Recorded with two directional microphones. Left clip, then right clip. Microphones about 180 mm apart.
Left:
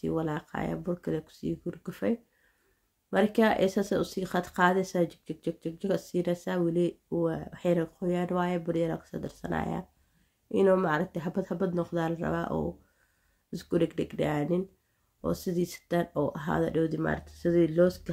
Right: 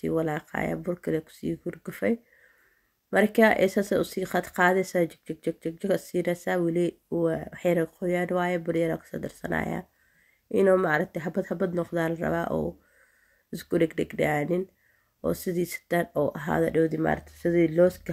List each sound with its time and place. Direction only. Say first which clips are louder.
0.0 s speech: right 4 dB; 20° right (ahead or behind)